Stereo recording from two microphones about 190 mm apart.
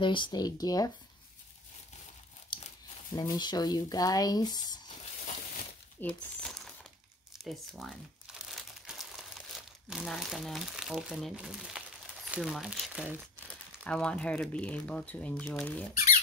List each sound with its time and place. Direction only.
0.0 s speech: 25° left (ahead or behind)
3.2 s speech: 20° left (ahead or behind)
5.9 s crumpling: 5° left (ahead or behind)
12.3 s speech: centre (ahead or behind)
13.7 s speech: 5° left (ahead or behind)